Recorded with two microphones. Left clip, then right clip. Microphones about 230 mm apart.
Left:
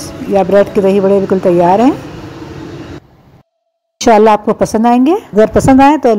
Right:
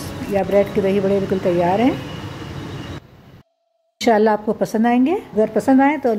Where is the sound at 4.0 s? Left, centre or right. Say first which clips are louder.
Left 9 dB; centre.